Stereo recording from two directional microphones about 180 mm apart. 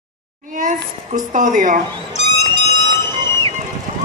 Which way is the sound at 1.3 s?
45° right (ahead or behind).